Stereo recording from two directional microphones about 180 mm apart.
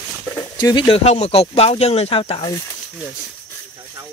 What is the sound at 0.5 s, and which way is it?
Speech, 25° left (ahead or behind).